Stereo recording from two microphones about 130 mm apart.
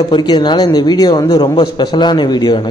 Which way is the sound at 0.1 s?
35° left (ahead or behind).